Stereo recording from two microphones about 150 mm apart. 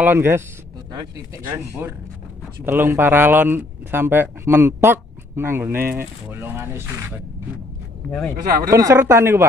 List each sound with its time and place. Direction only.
0.0 s speech: 15° right (ahead or behind)
8.6 s speech: 20° right (ahead or behind)